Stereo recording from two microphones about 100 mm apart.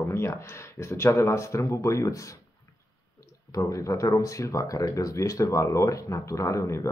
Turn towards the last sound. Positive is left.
turn(degrees=30)  # may be behind; listen again after turning